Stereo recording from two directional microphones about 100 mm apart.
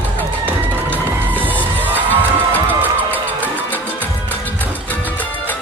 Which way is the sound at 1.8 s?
15° left (ahead or behind).